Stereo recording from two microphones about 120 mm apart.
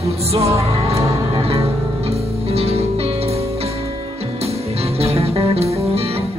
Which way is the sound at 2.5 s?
60° right (ahead or behind).